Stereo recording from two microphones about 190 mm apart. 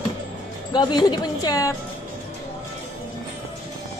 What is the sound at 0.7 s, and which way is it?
A woman's voice, 25° left (ahead or behind).